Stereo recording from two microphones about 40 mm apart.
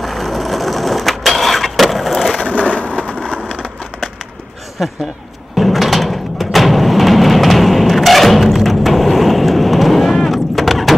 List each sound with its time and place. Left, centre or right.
0.0 s vehicle: centre
2.7 s crushing: left
5.6 s a sound: centre